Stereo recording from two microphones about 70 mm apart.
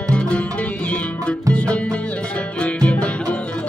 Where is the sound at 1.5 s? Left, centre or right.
Centre.